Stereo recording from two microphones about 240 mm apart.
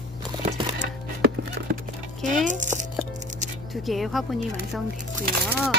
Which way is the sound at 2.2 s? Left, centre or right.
Right.